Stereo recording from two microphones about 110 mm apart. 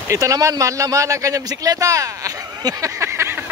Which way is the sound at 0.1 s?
30° right (ahead or behind).